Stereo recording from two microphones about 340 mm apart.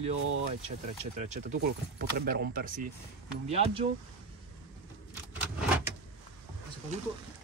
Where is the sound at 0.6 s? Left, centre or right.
Centre.